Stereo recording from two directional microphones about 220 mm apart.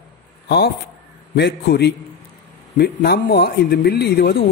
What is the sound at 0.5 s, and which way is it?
Speech, 45° left (ahead or behind).